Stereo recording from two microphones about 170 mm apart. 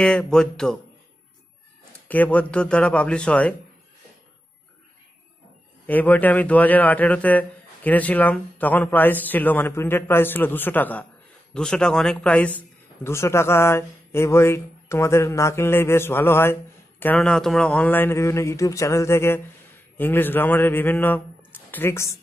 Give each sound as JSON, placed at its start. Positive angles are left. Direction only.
{"t": 0.0, "sound": "speech", "side_deg": 5}
{"t": 2.0, "sound": "a man's voice", "side_deg": 10}
{"t": 5.9, "sound": "a man's voice", "side_deg": 10}